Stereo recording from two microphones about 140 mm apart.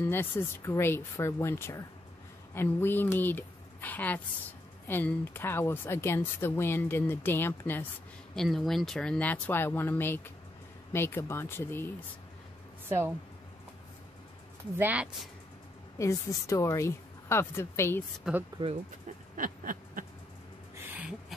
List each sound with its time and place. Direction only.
0.1 s speech: 15° left (ahead or behind)
8.4 s speech: 5° left (ahead or behind)
12.8 s a woman's voice: 15° right (ahead or behind)
14.8 s speech: 10° right (ahead or behind)
16.0 s a woman's voice: 20° left (ahead or behind)
18.3 s speech: 5° right (ahead or behind)
19.3 s a sound: 75° right (ahead or behind)